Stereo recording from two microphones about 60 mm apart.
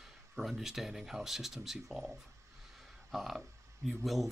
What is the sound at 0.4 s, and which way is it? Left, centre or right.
Speech, centre.